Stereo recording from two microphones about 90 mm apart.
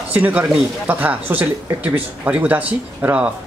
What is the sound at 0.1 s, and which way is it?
Speech, 20° right (ahead or behind).